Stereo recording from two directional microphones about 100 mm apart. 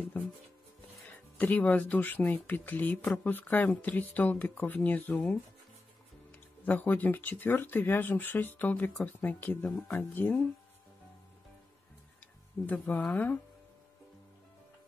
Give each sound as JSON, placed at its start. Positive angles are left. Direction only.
{"t": 1.4, "sound": "speech", "side_deg": 15}
{"t": 6.6, "sound": "speech", "side_deg": 20}
{"t": 12.6, "sound": "speech", "side_deg": 15}